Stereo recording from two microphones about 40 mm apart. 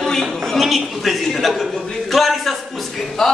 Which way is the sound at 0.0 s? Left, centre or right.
Centre.